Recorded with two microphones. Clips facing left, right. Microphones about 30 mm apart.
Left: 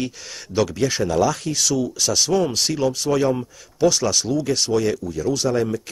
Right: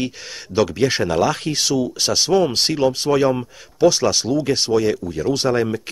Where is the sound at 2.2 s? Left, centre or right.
Right.